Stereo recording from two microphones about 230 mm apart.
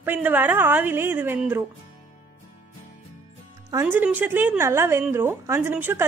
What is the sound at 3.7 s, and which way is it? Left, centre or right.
A woman's voice, centre.